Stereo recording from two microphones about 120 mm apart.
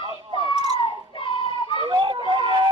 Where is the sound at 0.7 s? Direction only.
45° left (ahead or behind).